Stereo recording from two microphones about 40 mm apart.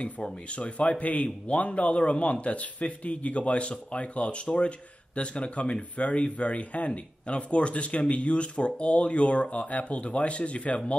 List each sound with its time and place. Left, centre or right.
0.0 s speech: left